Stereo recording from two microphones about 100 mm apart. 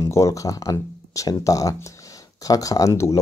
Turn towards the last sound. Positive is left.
turn(degrees=30)  # may be behind; listen again after turning